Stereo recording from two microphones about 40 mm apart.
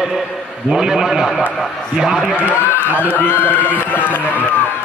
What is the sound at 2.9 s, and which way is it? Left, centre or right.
Speech, left.